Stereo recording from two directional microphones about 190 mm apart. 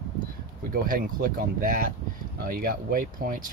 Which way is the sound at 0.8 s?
45° right (ahead or behind).